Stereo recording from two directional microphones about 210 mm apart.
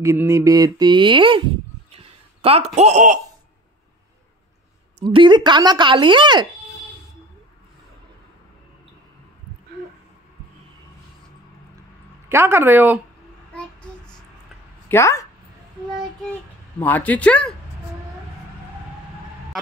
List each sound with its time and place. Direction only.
0.0 s speech: 15° right (ahead or behind)
1.9 s a sound: 30° right (ahead or behind)
5.0 s speech: 20° right (ahead or behind)
12.3 s speech: 10° right (ahead or behind)
14.9 s speech: 15° left (ahead or behind)
16.8 s speech: 10° left (ahead or behind)